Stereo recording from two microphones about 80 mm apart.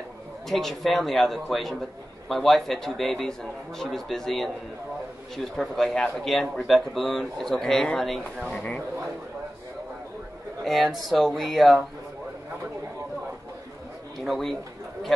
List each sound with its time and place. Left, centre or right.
0.5 s a man's voice: centre
10.6 s a man's voice: centre
14.1 s a man's voice: centre